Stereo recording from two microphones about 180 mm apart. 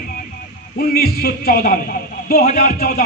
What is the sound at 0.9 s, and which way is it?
A man's voice, 60° left (ahead or behind).